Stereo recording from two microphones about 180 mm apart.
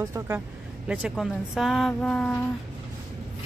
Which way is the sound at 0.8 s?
5° right (ahead or behind).